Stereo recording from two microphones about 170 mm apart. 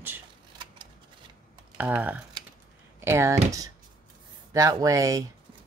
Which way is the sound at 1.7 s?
10° right (ahead or behind).